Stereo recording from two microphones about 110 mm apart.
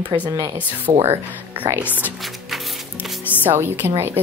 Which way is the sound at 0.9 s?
60° right (ahead or behind).